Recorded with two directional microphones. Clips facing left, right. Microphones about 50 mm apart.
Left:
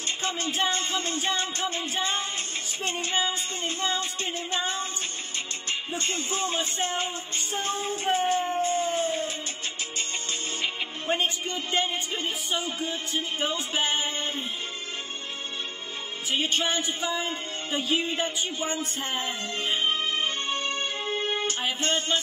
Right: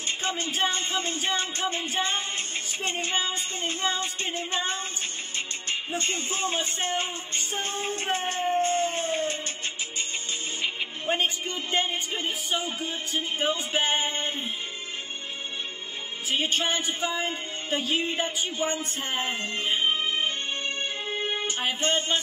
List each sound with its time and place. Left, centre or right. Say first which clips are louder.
0.2 s speech: even; right
1.2 s music: even; right
5.9 s music: even; right
10.6 s music: even; centre; by 14.3 s right
16.3 s music: even; centre
16.8 s speech: right 1 dB; right
19.1 s music: right 3 dB; right
19.5 s music: even; right
21.5 s speech: right 1 dB; right